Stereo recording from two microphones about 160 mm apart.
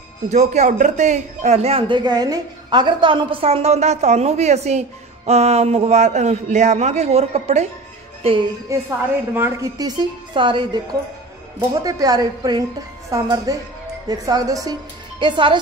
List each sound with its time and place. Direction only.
0.3 s speech: 45° right (ahead or behind)
8.2 s music: 35° right (ahead or behind)
8.7 s a woman's voice: 20° right (ahead or behind)